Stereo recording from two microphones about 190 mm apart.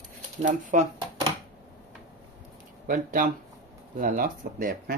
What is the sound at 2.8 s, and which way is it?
Speech, 45° right (ahead or behind).